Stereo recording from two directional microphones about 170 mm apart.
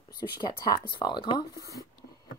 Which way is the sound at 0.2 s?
25° left (ahead or behind).